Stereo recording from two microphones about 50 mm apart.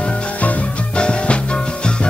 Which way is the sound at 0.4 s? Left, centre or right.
Left.